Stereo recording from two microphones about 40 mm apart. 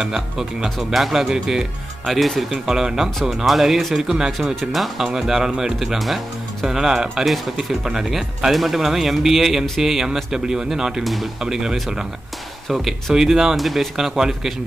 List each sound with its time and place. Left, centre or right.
0.0 s speech: centre
1.6 s speech: centre
2.7 s speech: centre
4.6 s speech: centre
13.1 s speech: centre